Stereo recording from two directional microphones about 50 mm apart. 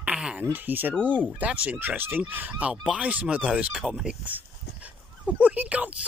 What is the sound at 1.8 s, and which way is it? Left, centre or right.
Speech, right.